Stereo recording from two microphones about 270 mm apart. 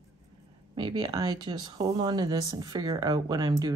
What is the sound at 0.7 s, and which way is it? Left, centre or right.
Speech, centre.